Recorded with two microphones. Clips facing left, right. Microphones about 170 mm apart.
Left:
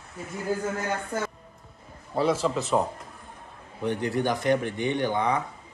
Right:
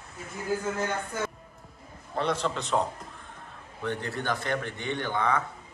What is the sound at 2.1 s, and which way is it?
Speech, 5° left (ahead or behind).